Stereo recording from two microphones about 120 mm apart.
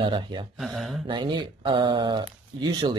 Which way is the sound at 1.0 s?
40° right (ahead or behind).